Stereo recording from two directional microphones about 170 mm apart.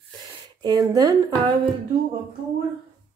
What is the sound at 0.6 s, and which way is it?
Speech, 25° right (ahead or behind).